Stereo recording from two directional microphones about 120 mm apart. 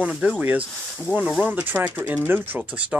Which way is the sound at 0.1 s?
10° right (ahead or behind).